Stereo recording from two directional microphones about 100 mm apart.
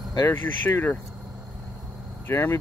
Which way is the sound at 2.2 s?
25° left (ahead or behind).